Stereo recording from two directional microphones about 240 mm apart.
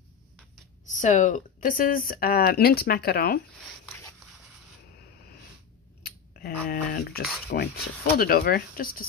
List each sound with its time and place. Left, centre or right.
0.8 s speech: left
6.0 s speech: left